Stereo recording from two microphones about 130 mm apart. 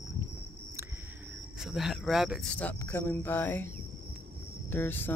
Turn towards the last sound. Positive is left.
turn(degrees=15)  # may be behind; listen again after turning